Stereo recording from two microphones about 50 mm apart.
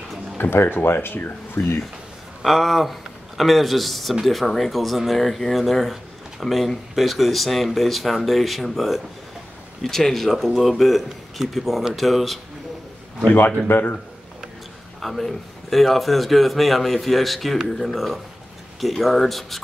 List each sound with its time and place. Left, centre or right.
0.4 s speech: left
2.4 s speech: centre
13.7 s speech: left
15.0 s speech: centre